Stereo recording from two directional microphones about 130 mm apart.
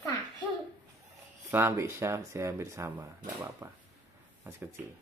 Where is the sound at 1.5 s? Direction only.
20° right (ahead or behind).